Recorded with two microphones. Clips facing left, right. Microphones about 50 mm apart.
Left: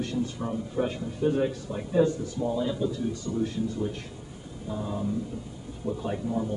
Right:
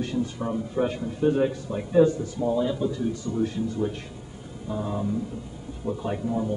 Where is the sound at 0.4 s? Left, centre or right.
Centre.